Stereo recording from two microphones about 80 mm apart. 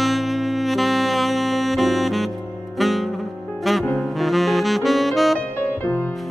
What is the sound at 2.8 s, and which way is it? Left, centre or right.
Music, centre.